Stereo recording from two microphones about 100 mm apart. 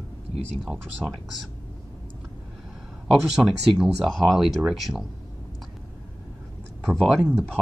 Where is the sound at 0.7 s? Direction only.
5° right (ahead or behind).